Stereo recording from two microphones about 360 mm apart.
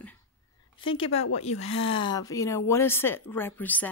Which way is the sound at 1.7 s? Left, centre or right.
Left.